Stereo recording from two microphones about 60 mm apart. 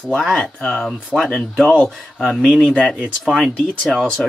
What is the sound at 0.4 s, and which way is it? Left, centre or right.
Speech, centre.